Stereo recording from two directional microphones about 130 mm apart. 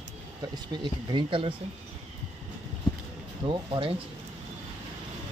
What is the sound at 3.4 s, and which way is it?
Speech, 40° right (ahead or behind).